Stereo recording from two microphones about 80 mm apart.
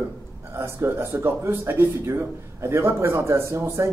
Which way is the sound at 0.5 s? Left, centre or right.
Right.